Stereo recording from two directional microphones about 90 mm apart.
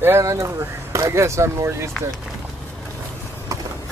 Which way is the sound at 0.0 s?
30° right (ahead or behind).